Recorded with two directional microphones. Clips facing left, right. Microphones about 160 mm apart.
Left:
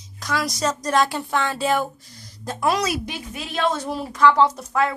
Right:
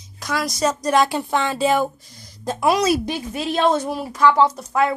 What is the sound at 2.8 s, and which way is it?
Speech, 35° right (ahead or behind).